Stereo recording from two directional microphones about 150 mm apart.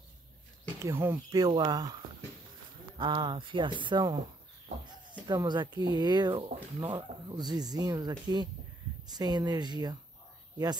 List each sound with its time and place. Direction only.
0.8 s speech: 15° right (ahead or behind)
3.0 s speech: 30° right (ahead or behind)
5.2 s speech: 30° right (ahead or behind)